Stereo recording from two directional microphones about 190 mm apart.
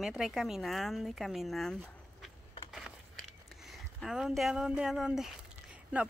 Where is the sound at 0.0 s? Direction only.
Centre (ahead or behind).